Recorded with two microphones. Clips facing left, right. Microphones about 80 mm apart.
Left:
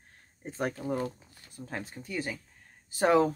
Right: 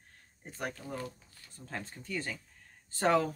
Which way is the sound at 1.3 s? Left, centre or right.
Centre.